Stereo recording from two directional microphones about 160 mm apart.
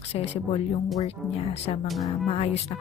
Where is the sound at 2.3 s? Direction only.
40° left (ahead or behind).